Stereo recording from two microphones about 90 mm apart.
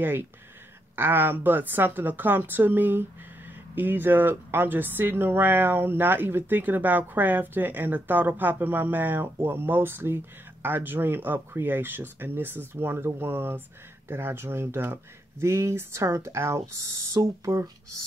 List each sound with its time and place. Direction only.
0.0 s speech: 25° right (ahead or behind)